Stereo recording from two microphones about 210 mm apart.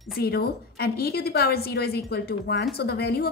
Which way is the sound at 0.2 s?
50° left (ahead or behind).